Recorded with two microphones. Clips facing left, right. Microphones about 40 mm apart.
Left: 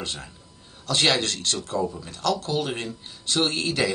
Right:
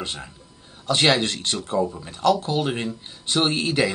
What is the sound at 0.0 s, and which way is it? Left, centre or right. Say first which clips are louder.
Speech: right 2 dB; centre.